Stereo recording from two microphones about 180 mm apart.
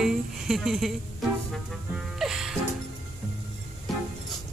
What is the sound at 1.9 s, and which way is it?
Music, 5° right (ahead or behind).